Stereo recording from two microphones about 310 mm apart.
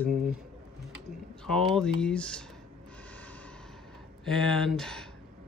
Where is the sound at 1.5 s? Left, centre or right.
Centre.